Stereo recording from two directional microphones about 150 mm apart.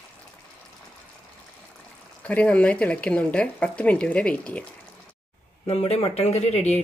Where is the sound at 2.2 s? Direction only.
10° left (ahead or behind).